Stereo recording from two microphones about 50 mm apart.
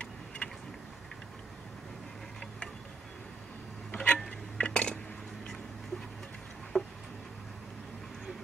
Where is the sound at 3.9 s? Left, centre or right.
Left.